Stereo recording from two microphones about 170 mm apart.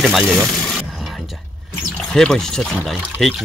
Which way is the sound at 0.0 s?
Centre (ahead or behind).